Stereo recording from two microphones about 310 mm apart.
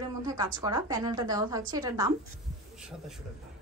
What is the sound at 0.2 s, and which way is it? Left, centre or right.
Speech, centre.